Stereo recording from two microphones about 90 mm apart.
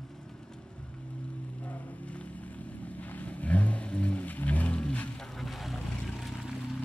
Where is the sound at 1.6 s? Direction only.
15° left (ahead or behind).